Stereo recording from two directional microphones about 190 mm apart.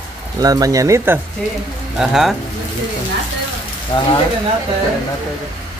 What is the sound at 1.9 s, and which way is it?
Speech, 5° right (ahead or behind).